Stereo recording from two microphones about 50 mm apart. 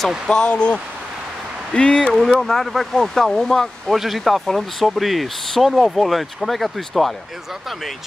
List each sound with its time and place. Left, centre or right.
0.3 s speech: centre
2.4 s speech: centre
3.9 s speech: centre